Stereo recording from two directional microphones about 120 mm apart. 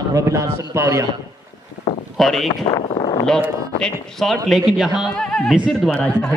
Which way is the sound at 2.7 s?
45° left (ahead or behind).